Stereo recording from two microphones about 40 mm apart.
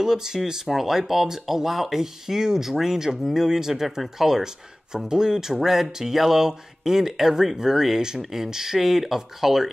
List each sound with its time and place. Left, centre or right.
0.0 s speech: centre